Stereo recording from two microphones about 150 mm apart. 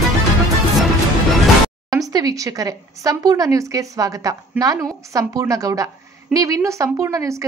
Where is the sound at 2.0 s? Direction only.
25° right (ahead or behind).